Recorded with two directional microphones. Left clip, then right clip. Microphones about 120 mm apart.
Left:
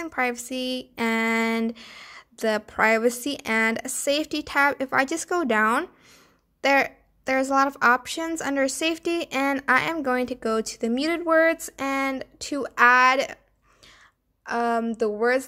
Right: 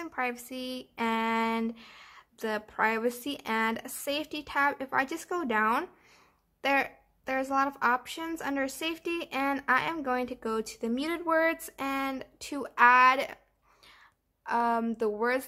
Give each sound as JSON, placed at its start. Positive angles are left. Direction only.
{"t": 0.0, "sound": "a sound", "side_deg": 40}
{"t": 9.9, "sound": "speech", "side_deg": 40}
{"t": 14.4, "sound": "speech", "side_deg": 20}